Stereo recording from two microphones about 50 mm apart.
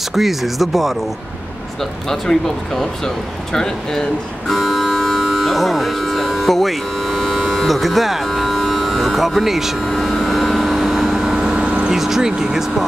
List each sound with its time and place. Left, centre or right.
0.1 s speech: centre
1.8 s speech: centre
4.5 s vehicle: centre
5.2 s a sound: centre
9.9 s vehicle: centre
11.6 s vehicle: right
11.9 s speech: centre